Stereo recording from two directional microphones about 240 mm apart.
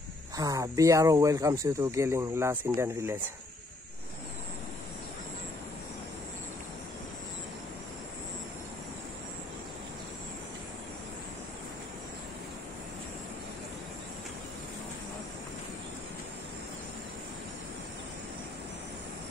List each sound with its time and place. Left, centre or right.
0.4 s speech: centre